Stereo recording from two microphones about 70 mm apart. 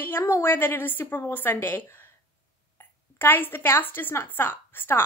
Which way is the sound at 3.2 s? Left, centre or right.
Left.